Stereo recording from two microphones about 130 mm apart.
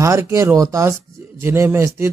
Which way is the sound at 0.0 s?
20° right (ahead or behind).